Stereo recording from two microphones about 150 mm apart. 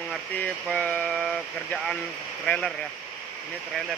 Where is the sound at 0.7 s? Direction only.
10° left (ahead or behind).